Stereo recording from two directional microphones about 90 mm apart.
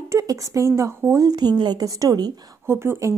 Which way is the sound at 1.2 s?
50° right (ahead or behind).